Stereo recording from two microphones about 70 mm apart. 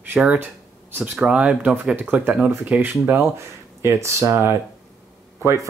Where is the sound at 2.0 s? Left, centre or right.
Right.